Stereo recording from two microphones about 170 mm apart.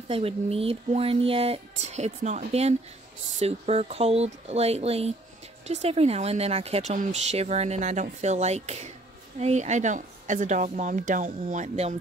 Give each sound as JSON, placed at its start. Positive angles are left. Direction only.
{"t": 0.1, "sound": "a woman's voice", "side_deg": -35}